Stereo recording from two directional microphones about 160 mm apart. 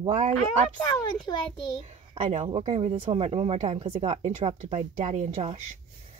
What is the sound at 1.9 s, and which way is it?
A woman's voice, 45° right (ahead or behind).